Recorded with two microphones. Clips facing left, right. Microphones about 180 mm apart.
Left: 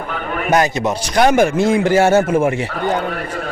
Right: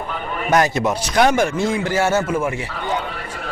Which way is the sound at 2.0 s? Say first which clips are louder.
Left 5 dB; 50° left (ahead or behind).